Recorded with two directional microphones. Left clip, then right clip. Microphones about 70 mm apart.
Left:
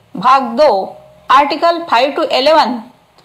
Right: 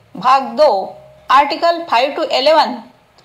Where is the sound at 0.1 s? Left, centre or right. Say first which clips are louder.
Left 2 dB; left.